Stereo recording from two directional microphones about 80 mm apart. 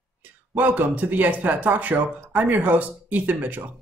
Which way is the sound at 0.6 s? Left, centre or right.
Right.